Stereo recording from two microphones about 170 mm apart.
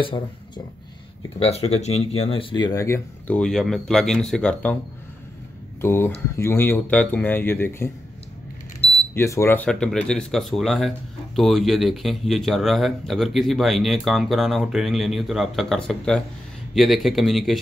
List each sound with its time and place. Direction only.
1.4 s speech: 35° left (ahead or behind); by 3.3 s 15° left (ahead or behind)
3.3 s speech: 5° left (ahead or behind)
5.8 s speech: 15° left (ahead or behind)
9.1 s speech: 15° left (ahead or behind); by 17.6 s centre (ahead or behind)